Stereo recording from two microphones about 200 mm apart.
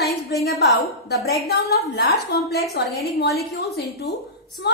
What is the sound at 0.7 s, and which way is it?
A woman's voice, 55° left (ahead or behind).